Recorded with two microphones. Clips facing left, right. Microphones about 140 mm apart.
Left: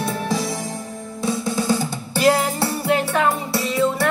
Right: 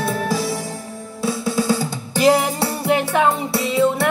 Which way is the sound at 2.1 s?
15° right (ahead or behind).